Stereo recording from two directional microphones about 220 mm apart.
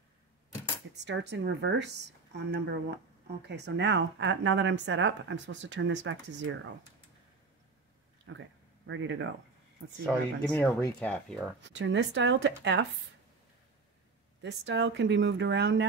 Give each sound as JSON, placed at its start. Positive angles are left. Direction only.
{"t": 1.0, "sound": "a woman's voice", "side_deg": -50}
{"t": 8.3, "sound": "speech", "side_deg": -60}
{"t": 10.0, "sound": "speech", "side_deg": 5}
{"t": 11.6, "sound": "speech", "side_deg": -55}
{"t": 14.4, "sound": "speech", "side_deg": -55}